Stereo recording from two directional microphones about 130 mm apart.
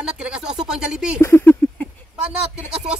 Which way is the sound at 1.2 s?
20° left (ahead or behind).